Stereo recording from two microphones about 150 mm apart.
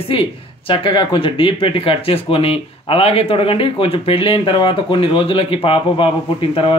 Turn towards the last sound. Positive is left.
turn(degrees=35)  # may be behind; listen again after turning